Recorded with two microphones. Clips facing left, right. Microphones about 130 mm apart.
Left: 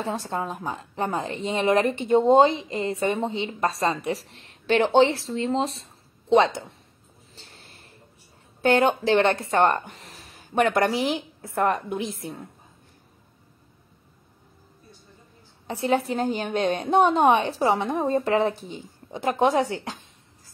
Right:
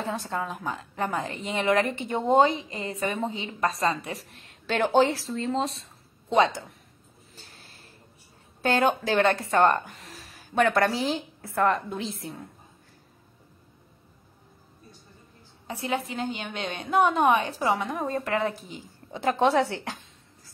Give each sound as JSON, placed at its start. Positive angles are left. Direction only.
{"t": 0.0, "sound": "speech", "side_deg": 25}
{"t": 7.3, "sound": "a sound", "side_deg": 25}
{"t": 8.6, "sound": "speech", "side_deg": 25}
{"t": 15.6, "sound": "a woman's voice", "side_deg": 30}
{"t": 19.1, "sound": "speech", "side_deg": 15}